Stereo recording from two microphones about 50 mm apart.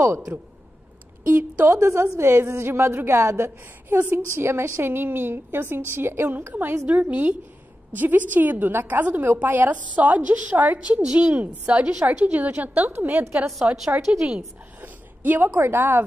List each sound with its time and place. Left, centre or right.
1.2 s a woman's voice: right
1.7 s a woman's voice: right
10.8 s a woman's voice: right
14.8 s a sound: right
15.5 s a woman's voice: right